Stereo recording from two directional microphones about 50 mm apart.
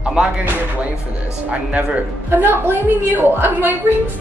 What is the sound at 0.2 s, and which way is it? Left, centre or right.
Speech, centre.